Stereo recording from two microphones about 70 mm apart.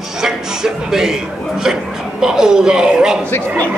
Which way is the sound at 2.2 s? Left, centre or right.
Centre.